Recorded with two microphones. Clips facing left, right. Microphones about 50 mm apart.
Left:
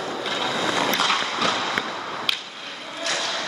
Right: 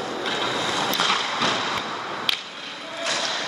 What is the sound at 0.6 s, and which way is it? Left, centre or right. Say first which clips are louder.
Boat: left 2 dB; left.